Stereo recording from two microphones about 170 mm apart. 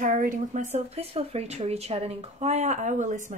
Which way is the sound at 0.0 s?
55° right (ahead or behind).